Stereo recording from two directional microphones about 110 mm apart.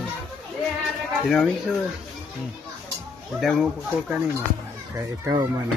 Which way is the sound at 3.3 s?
Centre (ahead or behind).